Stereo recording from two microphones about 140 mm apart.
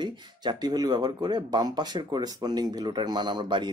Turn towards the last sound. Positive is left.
turn(degrees=-35)  # may be behind; listen again after turning